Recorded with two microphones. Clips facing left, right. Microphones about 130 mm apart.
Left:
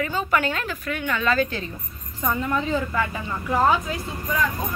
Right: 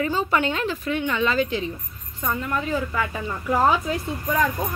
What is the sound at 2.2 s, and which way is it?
Speech, 5° left (ahead or behind).